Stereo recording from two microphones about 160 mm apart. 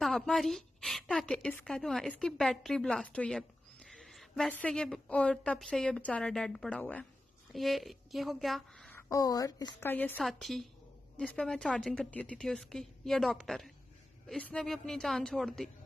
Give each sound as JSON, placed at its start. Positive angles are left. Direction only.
{"t": 0.0, "sound": "a woman's voice", "side_deg": 0}
{"t": 8.9, "sound": "speech", "side_deg": 20}
{"t": 9.8, "sound": "a woman's voice", "side_deg": 10}